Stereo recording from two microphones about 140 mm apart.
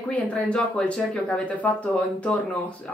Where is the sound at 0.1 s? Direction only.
10° left (ahead or behind).